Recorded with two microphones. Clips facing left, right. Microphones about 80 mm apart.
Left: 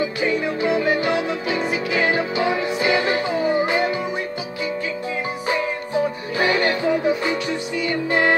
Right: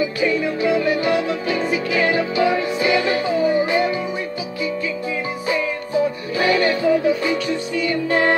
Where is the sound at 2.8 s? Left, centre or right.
Left.